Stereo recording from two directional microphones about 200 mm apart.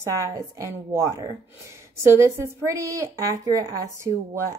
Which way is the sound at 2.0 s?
15° right (ahead or behind).